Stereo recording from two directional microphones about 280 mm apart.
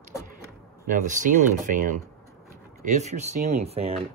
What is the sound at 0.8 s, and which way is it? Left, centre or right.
Speech, right.